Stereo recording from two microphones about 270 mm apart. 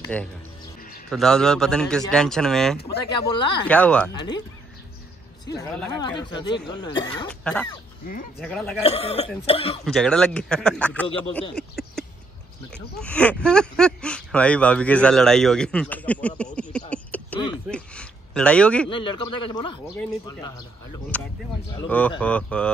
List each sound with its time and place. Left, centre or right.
0.1 s speech: centre
3.3 s speech: centre
3.6 s speech: centre
4.1 s speech: centre
5.5 s speech: centre
8.4 s speech: centre
8.8 s speech: left
9.8 s speech: centre
13.0 s speech: centre
16.5 s a sound: centre
18.9 s speech: centre
21.1 s speech: centre